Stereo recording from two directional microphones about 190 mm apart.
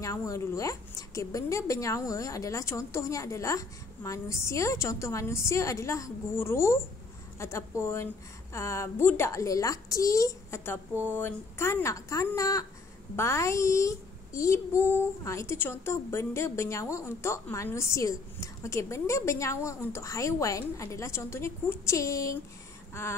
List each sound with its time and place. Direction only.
0.0 s a child's voice: 15° left (ahead or behind)